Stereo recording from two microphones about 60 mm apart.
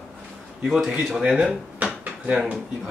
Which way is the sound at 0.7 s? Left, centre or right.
Centre.